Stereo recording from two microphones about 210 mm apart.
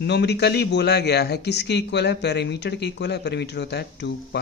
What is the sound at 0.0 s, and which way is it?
A man's voice, 55° left (ahead or behind).